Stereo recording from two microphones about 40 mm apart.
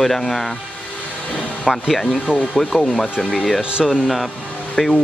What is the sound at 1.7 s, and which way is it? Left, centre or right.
Speech, centre.